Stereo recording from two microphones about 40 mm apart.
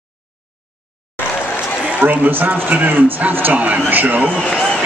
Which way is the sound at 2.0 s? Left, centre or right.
Right.